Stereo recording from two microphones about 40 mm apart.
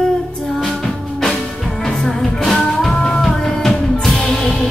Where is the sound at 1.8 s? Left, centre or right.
Centre.